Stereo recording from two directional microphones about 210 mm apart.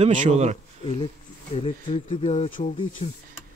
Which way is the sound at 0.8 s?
25° left (ahead or behind).